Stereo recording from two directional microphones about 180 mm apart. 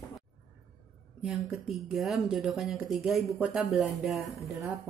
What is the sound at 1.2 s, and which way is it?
Speech, 5° right (ahead or behind).